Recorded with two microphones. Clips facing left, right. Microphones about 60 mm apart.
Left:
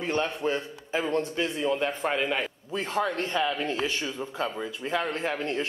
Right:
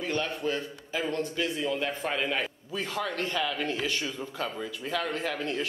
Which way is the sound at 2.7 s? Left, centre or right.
Left.